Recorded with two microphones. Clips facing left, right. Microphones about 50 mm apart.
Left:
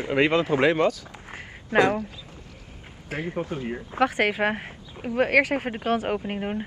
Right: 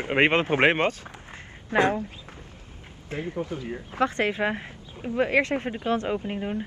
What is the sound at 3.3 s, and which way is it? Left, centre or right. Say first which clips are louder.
Speech: left 3 dB; left.